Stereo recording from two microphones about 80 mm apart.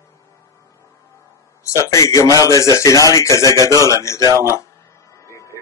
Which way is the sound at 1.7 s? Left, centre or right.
Left.